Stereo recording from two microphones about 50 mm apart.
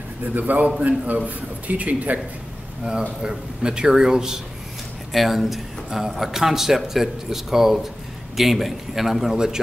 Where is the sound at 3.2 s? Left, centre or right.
Centre.